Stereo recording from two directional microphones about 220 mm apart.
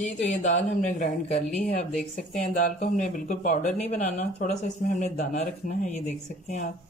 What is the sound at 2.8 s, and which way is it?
Speech, 35° left (ahead or behind).